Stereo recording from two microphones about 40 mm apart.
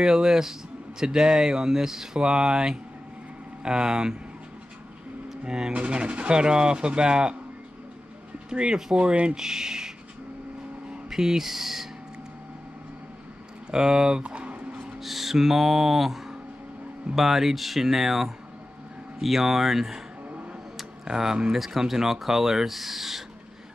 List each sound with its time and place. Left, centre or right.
0.0 s speech: centre
5.7 s speech: right
8.5 s speech: centre
8.9 s speech: right
9.4 s speech: centre
11.1 s speech: centre
13.7 s speech: centre
14.2 s a sound: right
15.0 s speech: centre
20.7 s tick-tock: centre
21.5 s speech: centre